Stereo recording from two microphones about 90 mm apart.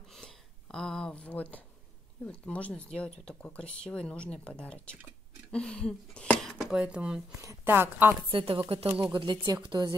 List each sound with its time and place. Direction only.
0.1 s a sound: 5° left (ahead or behind)
2.2 s speech: 15° left (ahead or behind)
5.5 s a sound: 10° left (ahead or behind)
6.6 s a woman's voice: 10° right (ahead or behind)
8.3 s speech: 75° right (ahead or behind)
9.0 s speech: 60° right (ahead or behind)